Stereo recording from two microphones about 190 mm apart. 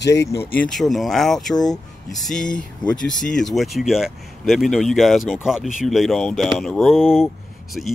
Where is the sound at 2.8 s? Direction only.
25° left (ahead or behind).